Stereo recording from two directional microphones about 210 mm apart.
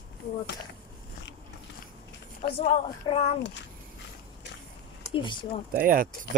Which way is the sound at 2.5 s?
30° left (ahead or behind).